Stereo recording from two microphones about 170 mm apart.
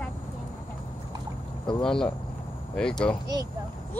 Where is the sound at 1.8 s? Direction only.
5° left (ahead or behind).